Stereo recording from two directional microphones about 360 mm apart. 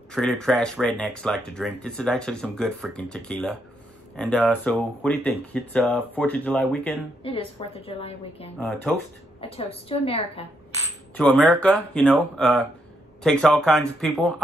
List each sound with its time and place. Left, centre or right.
0.1 s speech: centre
7.2 s a woman's voice: centre
8.5 s speech: centre
9.4 s a woman's voice: centre
11.1 s speech: centre